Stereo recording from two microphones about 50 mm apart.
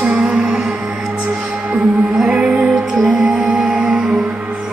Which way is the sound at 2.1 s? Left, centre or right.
Centre.